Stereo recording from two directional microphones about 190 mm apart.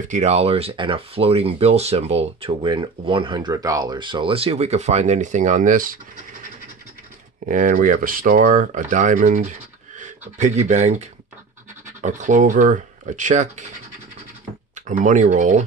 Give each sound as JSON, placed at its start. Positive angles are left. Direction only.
{"t": 0.1, "sound": "speech", "side_deg": -35}
{"t": 7.4, "sound": "speech", "side_deg": -45}
{"t": 14.9, "sound": "speech", "side_deg": -40}